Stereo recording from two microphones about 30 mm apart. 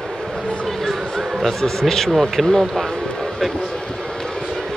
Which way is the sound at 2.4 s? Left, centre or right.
Centre.